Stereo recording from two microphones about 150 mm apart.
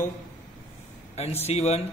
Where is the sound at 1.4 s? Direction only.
45° left (ahead or behind).